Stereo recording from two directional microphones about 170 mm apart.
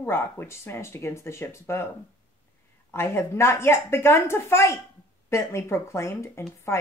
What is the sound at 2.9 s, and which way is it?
Speech, 15° left (ahead or behind).